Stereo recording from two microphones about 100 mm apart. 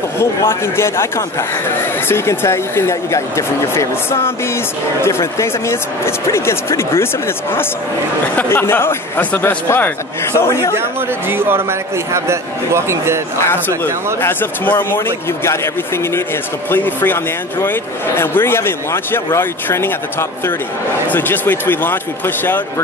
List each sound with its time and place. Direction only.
0.2 s speech: 25° left (ahead or behind)
8.5 s speech: 25° left (ahead or behind)
10.8 s a man's voice: 20° right (ahead or behind)
14.2 s speech: 20° left (ahead or behind)